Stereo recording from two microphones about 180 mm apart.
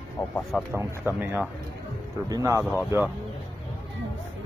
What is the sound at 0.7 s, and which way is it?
Speech, 10° right (ahead or behind).